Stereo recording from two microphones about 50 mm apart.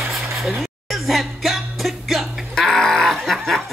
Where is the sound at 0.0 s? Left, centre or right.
Centre.